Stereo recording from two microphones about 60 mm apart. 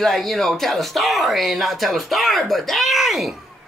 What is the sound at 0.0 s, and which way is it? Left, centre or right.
Speech, centre.